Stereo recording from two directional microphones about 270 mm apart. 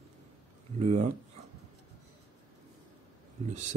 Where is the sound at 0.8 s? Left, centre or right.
Right.